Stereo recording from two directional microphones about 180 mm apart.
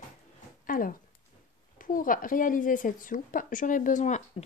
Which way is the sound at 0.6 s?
50° left (ahead or behind).